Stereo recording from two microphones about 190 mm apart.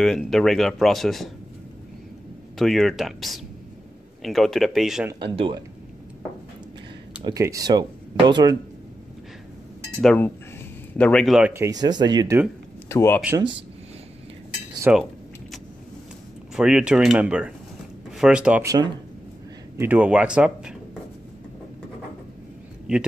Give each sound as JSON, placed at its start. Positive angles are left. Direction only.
{"t": 0.0, "sound": "speech", "side_deg": 0}
{"t": 2.6, "sound": "speech", "side_deg": 0}
{"t": 5.2, "sound": "speech", "side_deg": -25}
{"t": 7.2, "sound": "speech", "side_deg": -15}
{"t": 10.0, "sound": "speech", "side_deg": 10}
{"t": 11.5, "sound": "speech", "side_deg": -20}
{"t": 12.8, "sound": "speech", "side_deg": 10}
{"t": 14.9, "sound": "speech", "side_deg": -5}
{"t": 16.5, "sound": "speech", "side_deg": -5}
{"t": 19.8, "sound": "speech", "side_deg": -10}